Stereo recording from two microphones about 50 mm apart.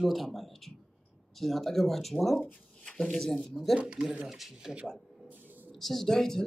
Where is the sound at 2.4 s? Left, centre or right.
Left.